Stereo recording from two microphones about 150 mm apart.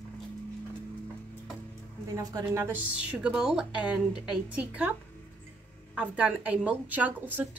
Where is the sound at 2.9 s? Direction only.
5° right (ahead or behind).